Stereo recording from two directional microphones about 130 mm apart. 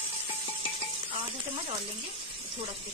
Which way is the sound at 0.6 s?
45° right (ahead or behind).